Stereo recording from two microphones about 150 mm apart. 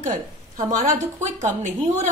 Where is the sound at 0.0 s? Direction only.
50° right (ahead or behind).